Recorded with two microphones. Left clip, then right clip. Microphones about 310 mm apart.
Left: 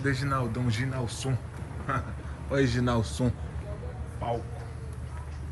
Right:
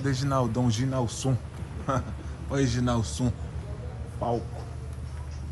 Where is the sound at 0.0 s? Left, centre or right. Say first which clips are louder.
Right 2 dB; centre.